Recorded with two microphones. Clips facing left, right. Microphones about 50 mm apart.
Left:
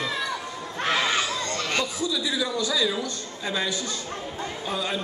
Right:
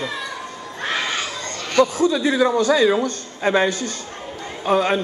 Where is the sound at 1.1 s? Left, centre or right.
Right.